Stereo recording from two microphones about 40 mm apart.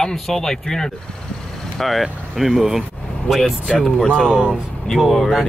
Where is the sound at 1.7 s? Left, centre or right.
Centre.